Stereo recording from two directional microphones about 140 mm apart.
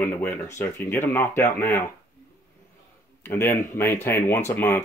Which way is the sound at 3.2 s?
15° left (ahead or behind).